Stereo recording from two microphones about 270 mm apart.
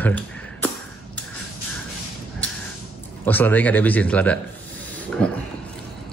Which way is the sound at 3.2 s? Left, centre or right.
Centre.